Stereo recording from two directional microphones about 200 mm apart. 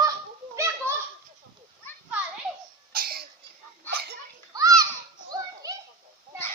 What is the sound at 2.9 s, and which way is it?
Cough, 50° right (ahead or behind).